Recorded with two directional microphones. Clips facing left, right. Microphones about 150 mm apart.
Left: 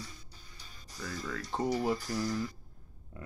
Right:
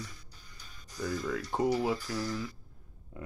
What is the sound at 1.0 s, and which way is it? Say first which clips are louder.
Speech: right 6 dB; 10° right (ahead or behind).